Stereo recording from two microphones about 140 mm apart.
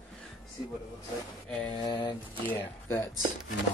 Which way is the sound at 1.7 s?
35° left (ahead or behind).